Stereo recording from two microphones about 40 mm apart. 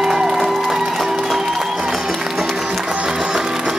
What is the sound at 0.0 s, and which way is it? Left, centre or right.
Music, centre.